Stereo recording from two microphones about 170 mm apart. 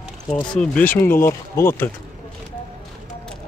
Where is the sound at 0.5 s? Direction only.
5° left (ahead or behind).